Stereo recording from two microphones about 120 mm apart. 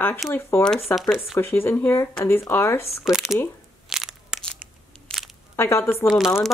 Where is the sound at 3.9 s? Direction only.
5° right (ahead or behind).